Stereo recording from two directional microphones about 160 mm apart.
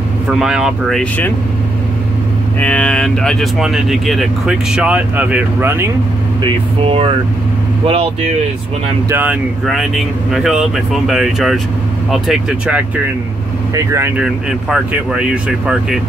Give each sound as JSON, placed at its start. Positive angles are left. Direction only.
{"t": 0.3, "sound": "speech", "side_deg": -5}
{"t": 2.6, "sound": "speech", "side_deg": 10}
{"t": 6.4, "sound": "speech", "side_deg": -35}
{"t": 9.1, "sound": "speech", "side_deg": -10}